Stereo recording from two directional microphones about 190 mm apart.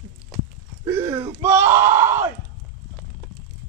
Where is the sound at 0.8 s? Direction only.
15° right (ahead or behind).